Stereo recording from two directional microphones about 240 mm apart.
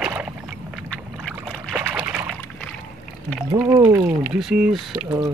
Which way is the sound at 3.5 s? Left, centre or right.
Centre.